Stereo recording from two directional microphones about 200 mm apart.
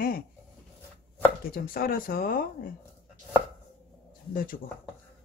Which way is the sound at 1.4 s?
45° left (ahead or behind).